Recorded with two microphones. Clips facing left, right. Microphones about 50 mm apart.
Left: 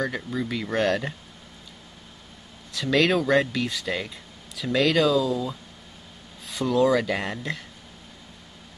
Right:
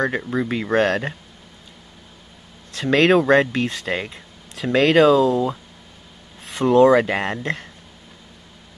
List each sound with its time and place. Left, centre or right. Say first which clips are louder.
0.2 s speech: right 6 dB; right
2.7 s speech: right 6 dB; right
5.0 s speech: right 7 dB; right